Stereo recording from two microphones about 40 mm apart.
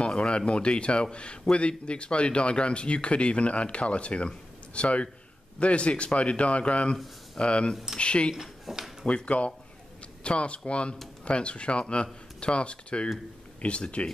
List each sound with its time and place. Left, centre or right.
0.0 s a man's voice: left
7.7 s speech: centre
8.0 s speech: left
8.4 s speech: centre
9.0 s a man's voice: left